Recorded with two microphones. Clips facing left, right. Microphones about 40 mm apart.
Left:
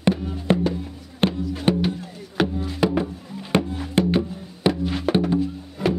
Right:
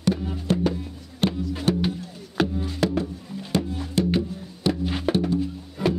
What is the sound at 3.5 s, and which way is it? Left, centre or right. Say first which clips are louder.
Music: left 3 dB; left.